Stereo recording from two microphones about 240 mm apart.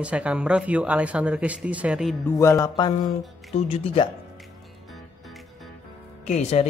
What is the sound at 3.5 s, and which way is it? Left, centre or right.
Speech, left.